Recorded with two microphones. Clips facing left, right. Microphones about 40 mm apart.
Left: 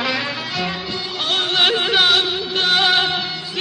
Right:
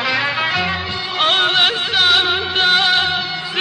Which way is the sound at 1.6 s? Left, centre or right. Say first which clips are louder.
Even; centre.